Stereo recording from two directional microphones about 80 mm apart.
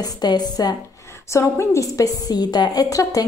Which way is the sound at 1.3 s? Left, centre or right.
Left.